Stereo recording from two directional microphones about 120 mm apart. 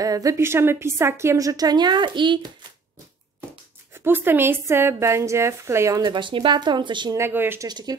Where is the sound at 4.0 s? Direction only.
15° right (ahead or behind).